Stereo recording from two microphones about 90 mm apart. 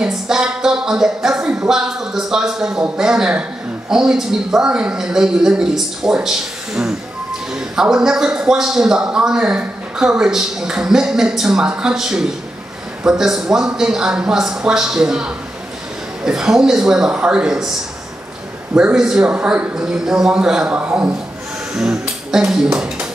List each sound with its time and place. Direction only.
0.0 s a man's voice: 5° right (ahead or behind)
18.8 s a man's voice: 10° right (ahead or behind)